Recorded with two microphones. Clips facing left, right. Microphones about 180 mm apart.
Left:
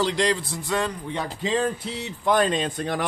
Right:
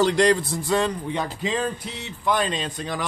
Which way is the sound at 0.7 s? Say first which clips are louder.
Right 3 dB; 30° right (ahead or behind).